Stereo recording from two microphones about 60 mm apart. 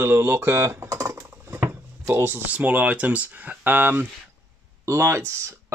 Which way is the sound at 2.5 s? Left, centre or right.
Right.